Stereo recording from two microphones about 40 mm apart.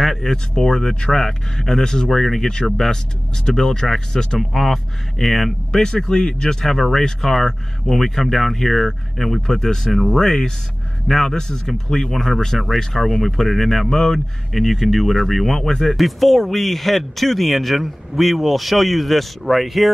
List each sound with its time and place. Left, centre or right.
0.0 s speech: centre
4.4 s speech: centre
5.8 s speech: centre